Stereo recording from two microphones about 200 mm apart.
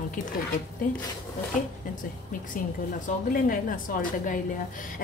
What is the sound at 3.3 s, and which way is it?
A woman's voice, 45° left (ahead or behind).